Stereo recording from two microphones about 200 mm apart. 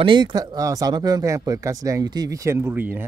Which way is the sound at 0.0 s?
25° right (ahead or behind).